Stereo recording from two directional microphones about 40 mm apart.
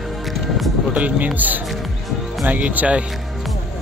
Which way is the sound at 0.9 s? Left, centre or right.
Right.